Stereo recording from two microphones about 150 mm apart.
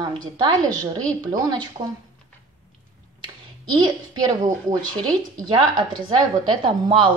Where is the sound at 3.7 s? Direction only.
30° right (ahead or behind).